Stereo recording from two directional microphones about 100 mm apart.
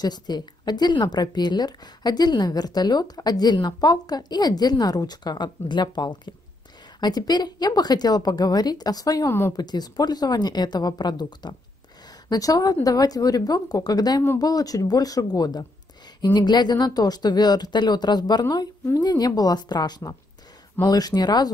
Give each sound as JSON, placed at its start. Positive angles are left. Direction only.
{"t": 0.0, "sound": "a woman's voice", "side_deg": 45}